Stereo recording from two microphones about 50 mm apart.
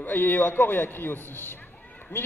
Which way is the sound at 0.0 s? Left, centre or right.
Left.